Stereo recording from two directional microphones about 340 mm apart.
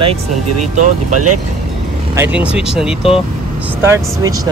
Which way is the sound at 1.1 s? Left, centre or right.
Right.